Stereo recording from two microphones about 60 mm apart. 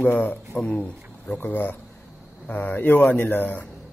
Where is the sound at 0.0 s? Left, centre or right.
Left.